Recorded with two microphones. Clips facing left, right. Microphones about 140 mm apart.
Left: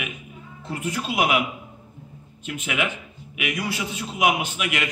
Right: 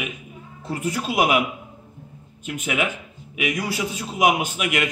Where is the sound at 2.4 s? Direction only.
45° right (ahead or behind).